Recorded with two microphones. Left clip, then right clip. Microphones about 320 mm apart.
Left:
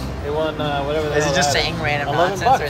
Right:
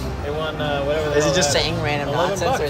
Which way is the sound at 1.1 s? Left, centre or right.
Centre.